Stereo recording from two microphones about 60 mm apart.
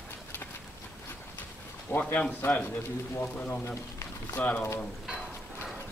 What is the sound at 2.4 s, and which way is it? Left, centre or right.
Speech, left.